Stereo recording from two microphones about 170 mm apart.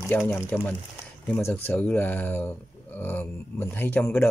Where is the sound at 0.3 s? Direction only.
10° left (ahead or behind).